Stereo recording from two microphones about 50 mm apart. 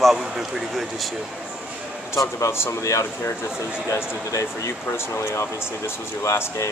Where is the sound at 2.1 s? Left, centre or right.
Left.